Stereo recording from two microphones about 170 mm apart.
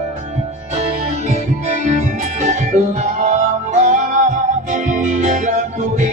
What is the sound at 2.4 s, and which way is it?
Music, 45° right (ahead or behind).